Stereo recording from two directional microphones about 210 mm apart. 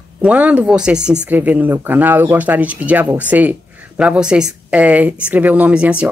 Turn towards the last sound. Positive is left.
turn(degrees=-5)  # may be behind; listen again after turning